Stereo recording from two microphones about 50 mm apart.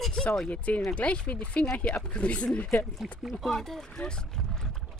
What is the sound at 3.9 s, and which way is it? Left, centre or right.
Boat, centre.